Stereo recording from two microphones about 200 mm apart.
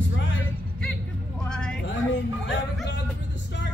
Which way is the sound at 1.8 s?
65° left (ahead or behind).